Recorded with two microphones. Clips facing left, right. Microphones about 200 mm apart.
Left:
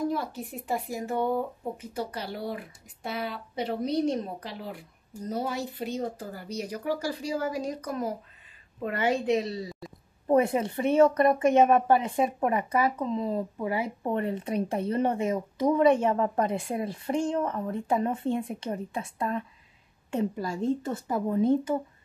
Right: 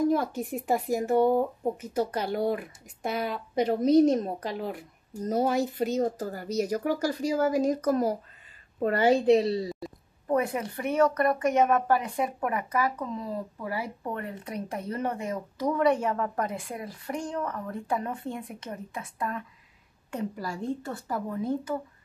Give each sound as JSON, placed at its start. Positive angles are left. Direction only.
{"t": 0.1, "sound": "speech", "side_deg": -45}
{"t": 1.1, "sound": "speech", "side_deg": -10}
{"t": 1.6, "sound": "a woman's voice", "side_deg": -45}
{"t": 10.2, "sound": "speech", "side_deg": 25}